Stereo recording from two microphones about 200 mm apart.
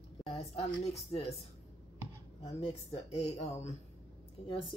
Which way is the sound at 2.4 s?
30° left (ahead or behind).